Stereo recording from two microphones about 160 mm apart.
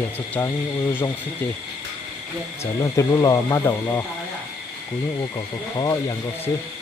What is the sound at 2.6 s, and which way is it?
Speech, 20° left (ahead or behind).